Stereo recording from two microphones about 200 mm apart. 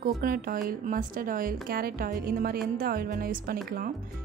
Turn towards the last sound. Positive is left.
turn(degrees=-45)  # may be behind; listen again after turning